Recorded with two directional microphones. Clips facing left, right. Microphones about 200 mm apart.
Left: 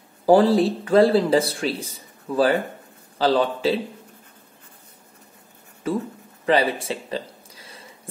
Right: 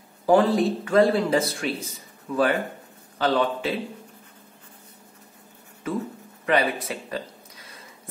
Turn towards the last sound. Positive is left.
turn(degrees=30)  # may be behind; listen again after turning